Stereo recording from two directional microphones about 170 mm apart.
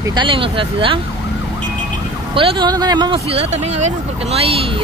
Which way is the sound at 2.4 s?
30° right (ahead or behind).